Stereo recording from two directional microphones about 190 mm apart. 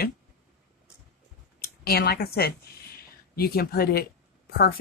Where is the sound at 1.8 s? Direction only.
55° left (ahead or behind).